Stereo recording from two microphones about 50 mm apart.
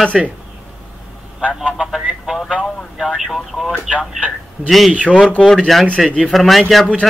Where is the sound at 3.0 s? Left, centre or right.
Centre.